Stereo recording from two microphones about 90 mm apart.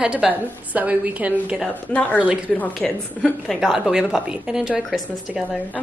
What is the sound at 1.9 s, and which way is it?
Speech, 15° left (ahead or behind).